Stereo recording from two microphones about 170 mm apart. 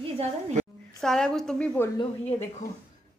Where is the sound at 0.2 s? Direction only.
40° right (ahead or behind).